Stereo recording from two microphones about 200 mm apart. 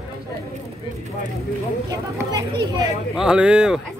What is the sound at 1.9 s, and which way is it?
Speech, 20° right (ahead or behind).